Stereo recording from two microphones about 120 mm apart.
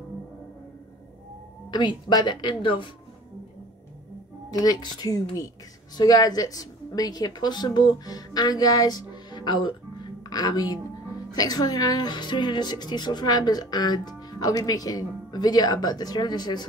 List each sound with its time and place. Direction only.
1.7 s speech: 40° left (ahead or behind)
4.5 s speech: 35° left (ahead or behind)